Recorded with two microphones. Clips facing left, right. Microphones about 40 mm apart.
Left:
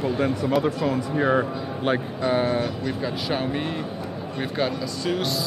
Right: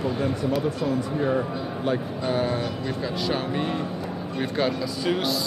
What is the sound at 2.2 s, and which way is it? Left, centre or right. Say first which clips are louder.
Speech: left 3 dB; left.